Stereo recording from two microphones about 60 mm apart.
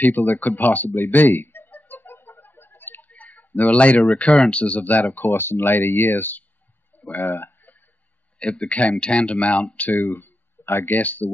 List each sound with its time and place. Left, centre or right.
0.0 s speech: left
0.9 s a sound: left
2.1 s speech: left
8.4 s speech: left
11.0 s speech: left